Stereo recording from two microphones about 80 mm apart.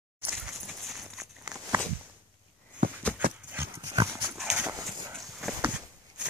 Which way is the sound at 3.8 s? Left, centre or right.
Right.